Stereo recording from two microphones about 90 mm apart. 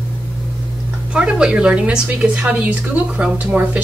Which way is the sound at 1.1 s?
10° right (ahead or behind).